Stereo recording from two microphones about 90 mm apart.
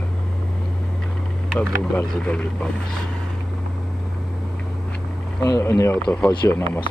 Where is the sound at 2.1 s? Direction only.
10° left (ahead or behind).